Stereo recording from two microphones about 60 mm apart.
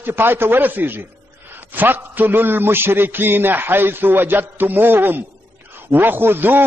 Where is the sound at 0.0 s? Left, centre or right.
Right.